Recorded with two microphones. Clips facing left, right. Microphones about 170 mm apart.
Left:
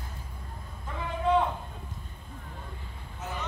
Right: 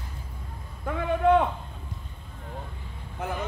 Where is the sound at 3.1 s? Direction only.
60° right (ahead or behind).